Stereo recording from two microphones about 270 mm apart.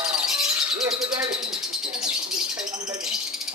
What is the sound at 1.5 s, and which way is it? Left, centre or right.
Bird, centre.